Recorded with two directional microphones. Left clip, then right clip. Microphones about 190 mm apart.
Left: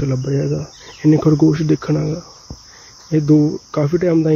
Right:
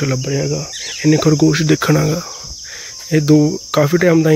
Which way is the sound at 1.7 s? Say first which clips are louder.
Right 5 dB; 15° right (ahead or behind).